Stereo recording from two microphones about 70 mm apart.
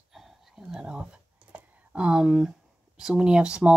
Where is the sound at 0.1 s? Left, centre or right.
Centre.